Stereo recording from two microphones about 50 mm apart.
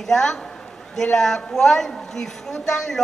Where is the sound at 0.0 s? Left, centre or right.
Centre.